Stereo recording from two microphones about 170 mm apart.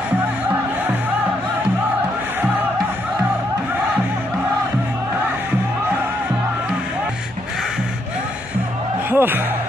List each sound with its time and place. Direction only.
9.1 s music: 10° right (ahead or behind)